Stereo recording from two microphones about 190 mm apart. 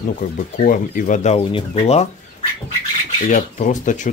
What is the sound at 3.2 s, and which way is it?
Speech, 40° left (ahead or behind).